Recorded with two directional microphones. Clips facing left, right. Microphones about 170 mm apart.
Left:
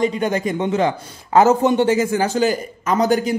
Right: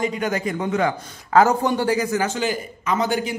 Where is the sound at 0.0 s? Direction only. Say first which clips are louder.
Left 4 dB; 30° left (ahead or behind).